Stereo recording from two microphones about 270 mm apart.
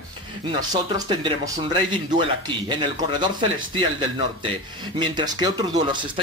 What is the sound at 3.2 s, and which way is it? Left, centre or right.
Speech, centre.